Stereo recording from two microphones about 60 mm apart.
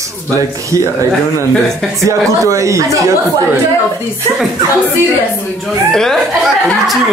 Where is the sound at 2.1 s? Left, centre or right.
Right.